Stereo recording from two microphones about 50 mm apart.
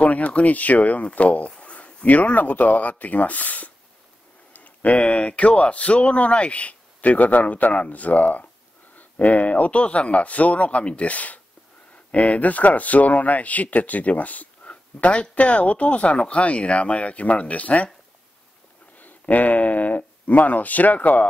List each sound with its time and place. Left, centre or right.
0.0 s speech: left
18.9 s speech: left